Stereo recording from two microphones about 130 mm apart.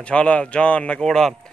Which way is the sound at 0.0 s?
10° left (ahead or behind).